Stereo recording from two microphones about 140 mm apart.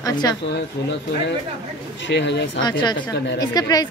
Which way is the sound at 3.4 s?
25° left (ahead or behind).